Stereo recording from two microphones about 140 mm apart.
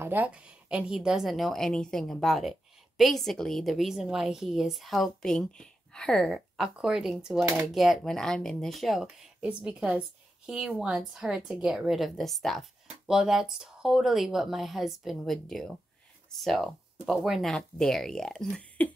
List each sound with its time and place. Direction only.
0.0 s speech: 15° right (ahead or behind)
7.3 s speech: 15° right (ahead or behind)
7.6 s speech: centre (ahead or behind)